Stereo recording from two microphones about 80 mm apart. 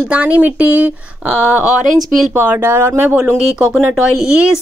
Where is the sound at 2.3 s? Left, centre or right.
Right.